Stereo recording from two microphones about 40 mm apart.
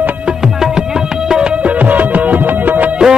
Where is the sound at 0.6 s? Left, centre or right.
Centre; by 2.9 s right.